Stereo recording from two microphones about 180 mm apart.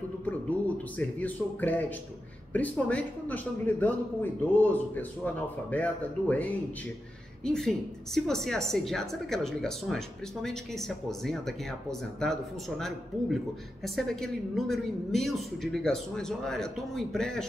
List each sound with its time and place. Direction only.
0.9 s a man's voice: 10° left (ahead or behind)